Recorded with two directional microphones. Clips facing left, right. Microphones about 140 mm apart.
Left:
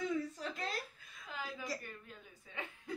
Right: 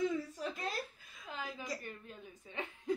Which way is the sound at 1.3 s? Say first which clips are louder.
Right 1 dB; 20° right (ahead or behind).